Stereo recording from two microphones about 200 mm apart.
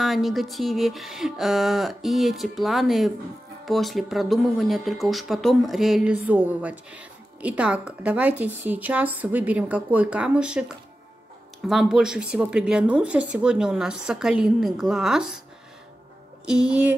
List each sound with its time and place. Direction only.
0.0 s speech: centre (ahead or behind)
11.6 s speech: centre (ahead or behind)
16.4 s speech: 5° right (ahead or behind)